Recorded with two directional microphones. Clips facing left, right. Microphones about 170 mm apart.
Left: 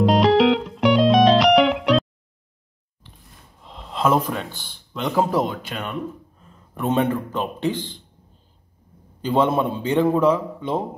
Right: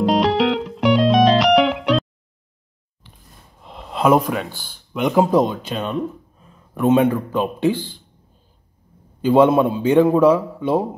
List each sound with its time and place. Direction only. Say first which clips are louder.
0.0 s music: left 1 dB; centre (ahead or behind)
3.6 s a sound: right 4 dB; 5° right (ahead or behind)
4.3 s speech: right 4 dB; 5° right (ahead or behind); by 5.9 s 25° right (ahead or behind)
6.7 s speech: right 5 dB; 10° right (ahead or behind)
9.2 s speech: right 6 dB; 15° right (ahead or behind)